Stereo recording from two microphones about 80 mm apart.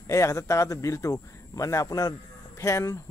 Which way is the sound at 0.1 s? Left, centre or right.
Left.